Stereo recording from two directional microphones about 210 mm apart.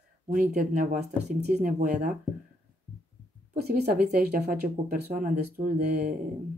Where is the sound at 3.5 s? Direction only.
50° right (ahead or behind).